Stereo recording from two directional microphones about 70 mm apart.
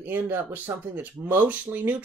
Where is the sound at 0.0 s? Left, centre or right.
Right.